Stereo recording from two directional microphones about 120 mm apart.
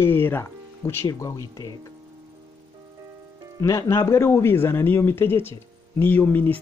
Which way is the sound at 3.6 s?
25° left (ahead or behind).